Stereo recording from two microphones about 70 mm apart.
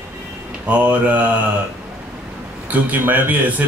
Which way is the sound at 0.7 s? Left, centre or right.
Centre.